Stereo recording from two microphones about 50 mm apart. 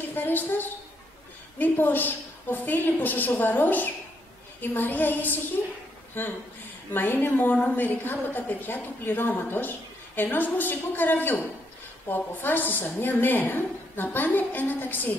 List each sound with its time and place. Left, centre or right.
0.1 s a woman's voice: left
6.9 s a woman's voice: left